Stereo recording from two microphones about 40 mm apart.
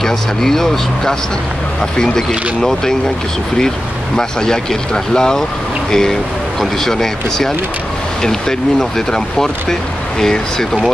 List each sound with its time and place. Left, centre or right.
0.0 s speech: centre
4.2 s speech: centre